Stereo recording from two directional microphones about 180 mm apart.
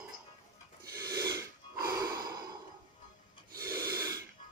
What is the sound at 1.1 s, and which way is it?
Snort, 60° right (ahead or behind).